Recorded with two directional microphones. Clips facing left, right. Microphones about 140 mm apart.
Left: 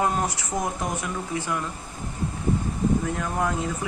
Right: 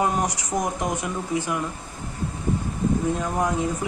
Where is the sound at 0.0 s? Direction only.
15° right (ahead or behind).